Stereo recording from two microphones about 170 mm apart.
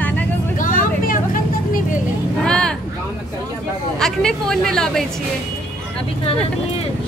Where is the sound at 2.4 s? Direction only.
5° left (ahead or behind).